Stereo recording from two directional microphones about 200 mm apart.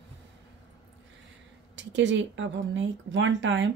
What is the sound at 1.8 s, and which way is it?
Speech, 65° right (ahead or behind).